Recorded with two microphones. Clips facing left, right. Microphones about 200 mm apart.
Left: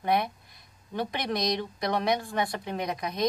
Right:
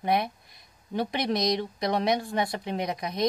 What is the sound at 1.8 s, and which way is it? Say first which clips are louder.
A woman's voice: right 1 dB; 20° right (ahead or behind).